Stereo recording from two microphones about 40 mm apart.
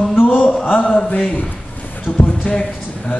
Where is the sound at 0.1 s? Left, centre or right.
Left.